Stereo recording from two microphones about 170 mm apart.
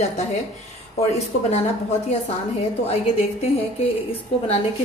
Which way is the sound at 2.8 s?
35° left (ahead or behind).